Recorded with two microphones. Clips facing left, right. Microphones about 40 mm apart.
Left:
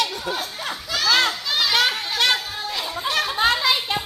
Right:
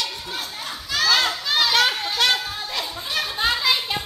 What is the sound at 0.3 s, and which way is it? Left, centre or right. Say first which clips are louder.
Speech: left 4 dB; centre.